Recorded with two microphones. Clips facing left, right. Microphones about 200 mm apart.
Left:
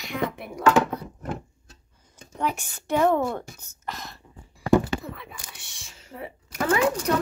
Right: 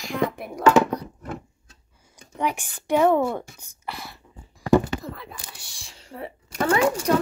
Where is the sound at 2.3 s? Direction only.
15° right (ahead or behind).